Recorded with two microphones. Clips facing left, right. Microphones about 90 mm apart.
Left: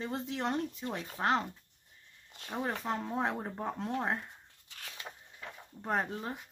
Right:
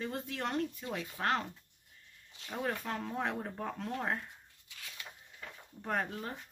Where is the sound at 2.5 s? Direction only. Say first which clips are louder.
Left 2 dB; 25° left (ahead or behind).